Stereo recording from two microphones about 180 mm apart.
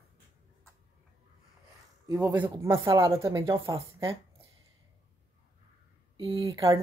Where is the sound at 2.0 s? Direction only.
10° right (ahead or behind).